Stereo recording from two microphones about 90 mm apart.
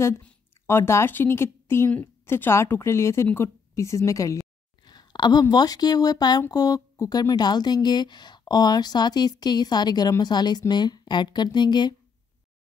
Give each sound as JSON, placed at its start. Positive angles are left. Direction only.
{"t": 0.7, "sound": "a woman's voice", "side_deg": 30}
{"t": 4.8, "sound": "speech", "side_deg": 50}